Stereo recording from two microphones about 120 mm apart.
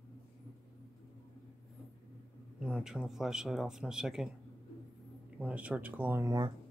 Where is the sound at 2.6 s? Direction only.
5° right (ahead or behind).